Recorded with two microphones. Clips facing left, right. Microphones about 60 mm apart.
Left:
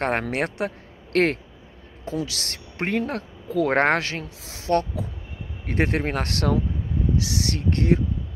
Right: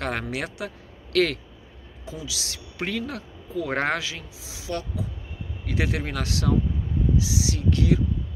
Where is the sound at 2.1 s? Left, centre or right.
Left.